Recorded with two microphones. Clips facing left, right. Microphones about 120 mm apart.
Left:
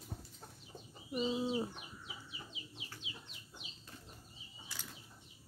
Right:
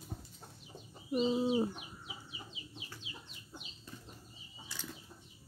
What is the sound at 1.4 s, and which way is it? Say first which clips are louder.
Bird: right 5 dB; 15° right (ahead or behind).